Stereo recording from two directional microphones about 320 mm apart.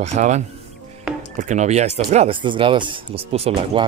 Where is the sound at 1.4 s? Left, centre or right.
Right.